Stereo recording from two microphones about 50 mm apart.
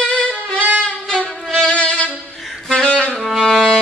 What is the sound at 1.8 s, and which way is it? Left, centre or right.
Violin, left.